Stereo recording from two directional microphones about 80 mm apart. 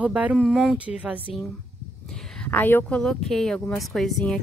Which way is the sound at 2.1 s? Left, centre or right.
Centre.